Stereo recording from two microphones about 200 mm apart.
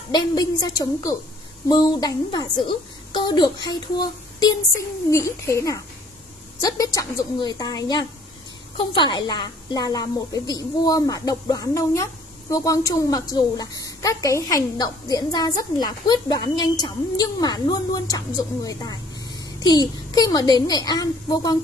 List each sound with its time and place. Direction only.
0.1 s a woman's voice: 20° left (ahead or behind)